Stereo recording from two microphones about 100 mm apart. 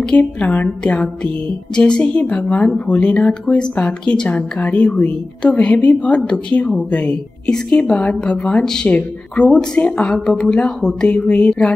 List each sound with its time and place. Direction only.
0.0 s a woman's voice: 10° left (ahead or behind)